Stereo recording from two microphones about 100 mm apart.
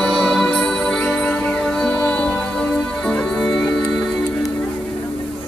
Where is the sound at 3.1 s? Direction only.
5° left (ahead or behind).